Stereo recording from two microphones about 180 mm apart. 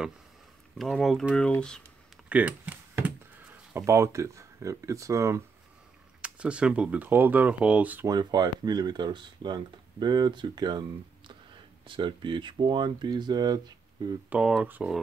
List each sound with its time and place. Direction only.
0.7 s speech: centre (ahead or behind)
2.2 s computer keyboard: 5° right (ahead or behind)
6.2 s speech: 5° right (ahead or behind)
8.1 s speech: 20° right (ahead or behind)
14.3 s speech: 5° right (ahead or behind)